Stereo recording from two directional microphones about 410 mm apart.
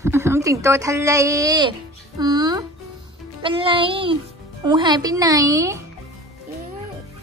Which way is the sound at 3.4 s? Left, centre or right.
Centre.